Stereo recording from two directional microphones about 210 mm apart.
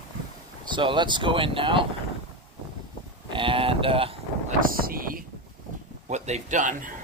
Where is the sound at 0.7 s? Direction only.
20° right (ahead or behind).